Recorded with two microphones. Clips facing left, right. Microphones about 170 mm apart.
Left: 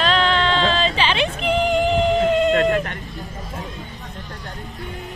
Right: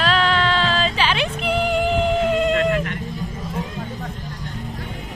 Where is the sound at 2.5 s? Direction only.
40° left (ahead or behind).